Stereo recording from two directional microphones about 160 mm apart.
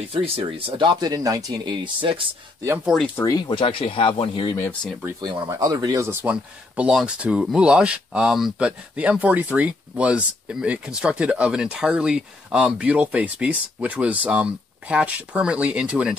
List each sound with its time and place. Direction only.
0.1 s speech: 35° right (ahead or behind)
2.8 s speech: centre (ahead or behind)
3.2 s speech: 25° left (ahead or behind)
5.5 s speech: 25° right (ahead or behind)
6.3 s speech: 5° right (ahead or behind)